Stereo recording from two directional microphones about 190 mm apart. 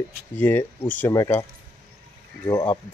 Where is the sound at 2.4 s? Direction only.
20° left (ahead or behind).